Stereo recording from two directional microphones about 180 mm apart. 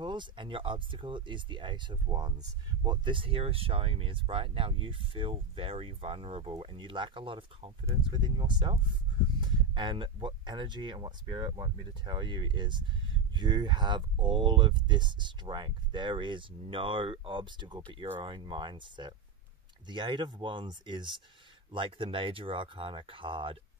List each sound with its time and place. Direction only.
0.0 s speech: 25° right (ahead or behind)